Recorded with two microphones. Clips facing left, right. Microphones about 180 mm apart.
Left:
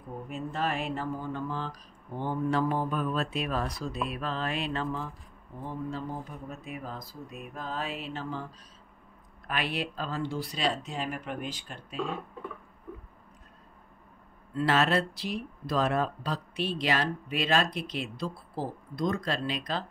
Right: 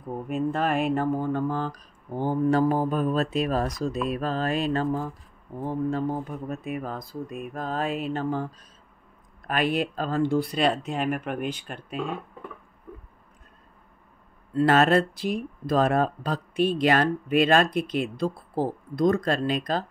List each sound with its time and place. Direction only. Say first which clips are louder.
0.3 s speech: right 7 dB; 55° right (ahead or behind)
9.5 s speech: right 7 dB; 45° right (ahead or behind)
14.5 s speech: right 6 dB; 50° right (ahead or behind)